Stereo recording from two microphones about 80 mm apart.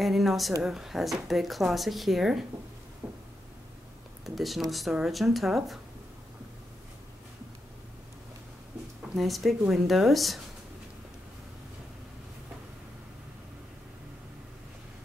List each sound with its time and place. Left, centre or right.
0.0 s speech: centre
3.0 s a sound: centre
4.4 s speech: centre
9.1 s speech: centre